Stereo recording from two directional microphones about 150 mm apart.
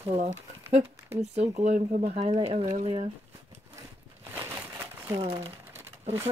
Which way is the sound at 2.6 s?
55° right (ahead or behind).